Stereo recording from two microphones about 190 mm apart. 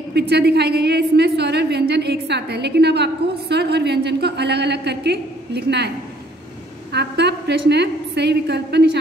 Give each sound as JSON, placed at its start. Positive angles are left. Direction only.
{"t": 0.3, "sound": "a woman's voice", "side_deg": -60}
{"t": 6.9, "sound": "a woman's voice", "side_deg": -60}